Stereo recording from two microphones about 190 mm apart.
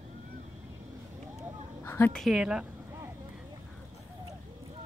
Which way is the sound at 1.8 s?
10° left (ahead or behind).